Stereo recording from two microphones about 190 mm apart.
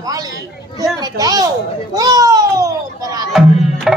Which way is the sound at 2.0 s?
20° right (ahead or behind).